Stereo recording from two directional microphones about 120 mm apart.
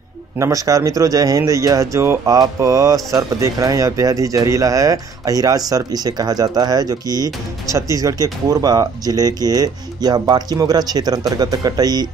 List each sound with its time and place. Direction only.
0.4 s speech: 30° right (ahead or behind)